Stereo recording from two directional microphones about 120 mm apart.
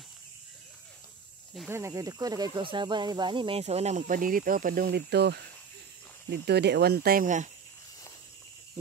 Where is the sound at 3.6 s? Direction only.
70° right (ahead or behind).